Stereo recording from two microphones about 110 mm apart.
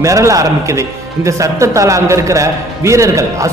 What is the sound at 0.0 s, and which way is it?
A man's voice, 30° right (ahead or behind).